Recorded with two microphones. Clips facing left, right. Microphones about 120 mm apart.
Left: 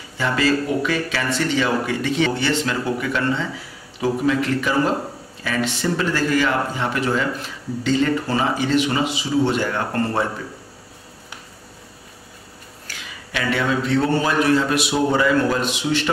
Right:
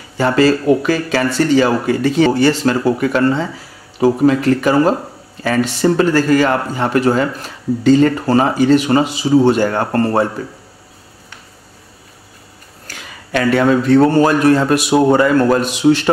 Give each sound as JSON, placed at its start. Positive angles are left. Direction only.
{"t": 0.2, "sound": "a man's voice", "side_deg": -40}
{"t": 12.8, "sound": "a man's voice", "side_deg": -45}